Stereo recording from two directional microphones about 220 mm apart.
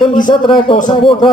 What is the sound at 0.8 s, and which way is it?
Speech, 20° left (ahead or behind).